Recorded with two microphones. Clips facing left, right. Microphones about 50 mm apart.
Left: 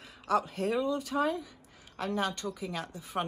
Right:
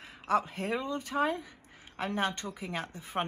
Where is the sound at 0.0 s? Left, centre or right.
Right.